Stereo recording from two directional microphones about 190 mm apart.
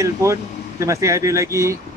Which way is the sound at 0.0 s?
15° right (ahead or behind).